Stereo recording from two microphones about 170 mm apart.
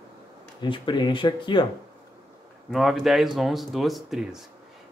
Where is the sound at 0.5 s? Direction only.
30° left (ahead or behind).